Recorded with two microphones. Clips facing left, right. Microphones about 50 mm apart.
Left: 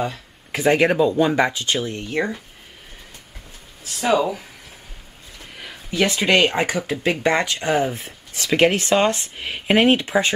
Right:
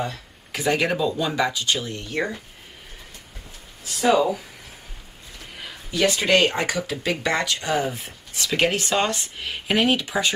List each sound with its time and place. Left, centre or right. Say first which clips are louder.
0.5 s speech: left 5 dB; left
3.8 s a sound: right 2 dB; left
5.9 s speech: left 1 dB; left